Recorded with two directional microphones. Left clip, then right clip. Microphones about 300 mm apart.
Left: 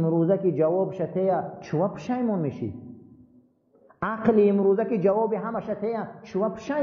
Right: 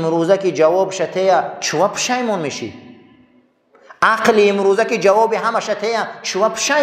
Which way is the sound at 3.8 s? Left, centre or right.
Centre.